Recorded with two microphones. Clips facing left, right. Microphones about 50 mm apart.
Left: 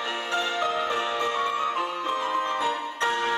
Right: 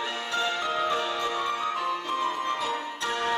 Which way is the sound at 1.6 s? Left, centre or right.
Left.